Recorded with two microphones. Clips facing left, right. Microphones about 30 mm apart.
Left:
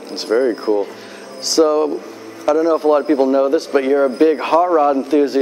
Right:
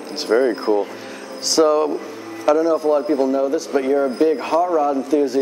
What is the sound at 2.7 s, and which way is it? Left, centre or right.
A man's voice, left.